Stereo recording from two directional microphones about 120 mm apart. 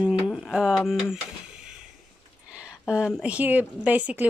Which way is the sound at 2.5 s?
5° right (ahead or behind).